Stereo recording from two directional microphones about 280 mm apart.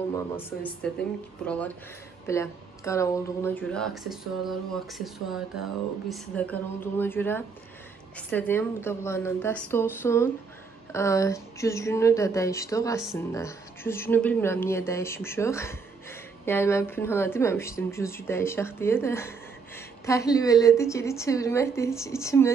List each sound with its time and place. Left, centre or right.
0.1 s speech: centre
1.4 s a sound: centre
6.0 s speech: centre